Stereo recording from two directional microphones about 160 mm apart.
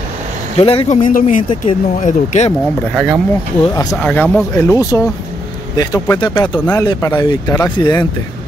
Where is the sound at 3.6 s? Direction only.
25° left (ahead or behind).